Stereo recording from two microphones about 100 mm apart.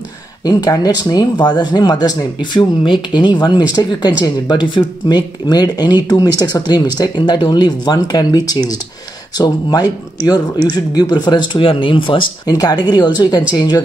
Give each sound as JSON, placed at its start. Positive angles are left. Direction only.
{"t": 0.5, "sound": "speech", "side_deg": 40}
{"t": 12.4, "sound": "speech", "side_deg": 40}